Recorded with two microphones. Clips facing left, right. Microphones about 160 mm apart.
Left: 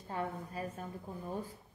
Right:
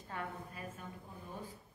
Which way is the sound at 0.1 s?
35° left (ahead or behind).